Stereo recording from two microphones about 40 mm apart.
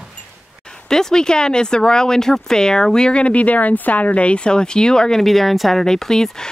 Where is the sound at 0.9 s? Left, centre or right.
Centre.